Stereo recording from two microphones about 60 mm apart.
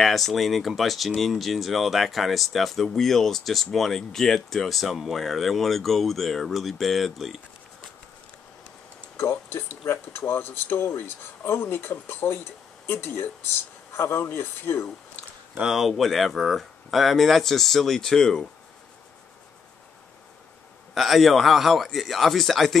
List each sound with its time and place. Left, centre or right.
0.0 s speech: centre
9.1 s speech: left
15.7 s speech: centre
20.9 s speech: centre